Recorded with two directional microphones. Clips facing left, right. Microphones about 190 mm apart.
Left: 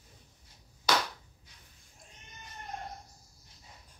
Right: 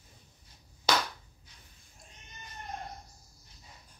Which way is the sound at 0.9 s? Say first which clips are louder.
Even; 25° right (ahead or behind).